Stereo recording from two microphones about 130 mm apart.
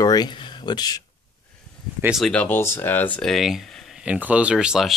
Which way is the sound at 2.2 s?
10° left (ahead or behind).